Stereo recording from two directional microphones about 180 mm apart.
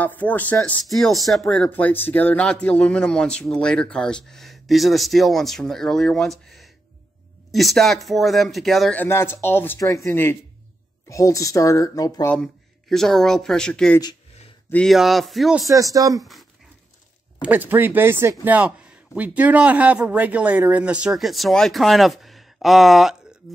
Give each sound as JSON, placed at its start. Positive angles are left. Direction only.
{"t": 0.0, "sound": "speech", "side_deg": 10}
{"t": 6.4, "sound": "a sound", "side_deg": 0}
{"t": 7.5, "sound": "a woman's voice", "side_deg": 0}
{"t": 12.4, "sound": "speech", "side_deg": 0}
{"t": 15.7, "sound": "speech", "side_deg": -20}
{"t": 17.4, "sound": "a man's voice", "side_deg": -10}